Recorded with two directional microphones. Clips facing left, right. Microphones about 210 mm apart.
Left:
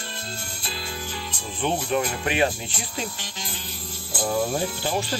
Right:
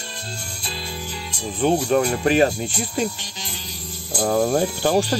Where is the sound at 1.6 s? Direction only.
40° right (ahead or behind).